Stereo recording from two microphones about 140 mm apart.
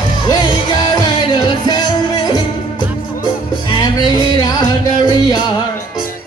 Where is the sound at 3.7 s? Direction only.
30° left (ahead or behind).